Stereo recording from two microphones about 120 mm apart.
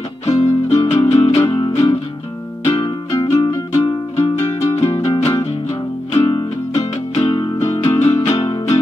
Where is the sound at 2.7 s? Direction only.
40° left (ahead or behind).